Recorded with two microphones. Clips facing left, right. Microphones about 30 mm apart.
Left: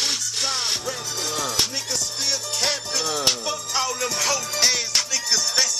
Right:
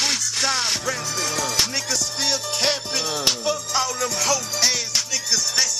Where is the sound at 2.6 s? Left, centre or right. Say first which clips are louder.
Right 1 dB; right.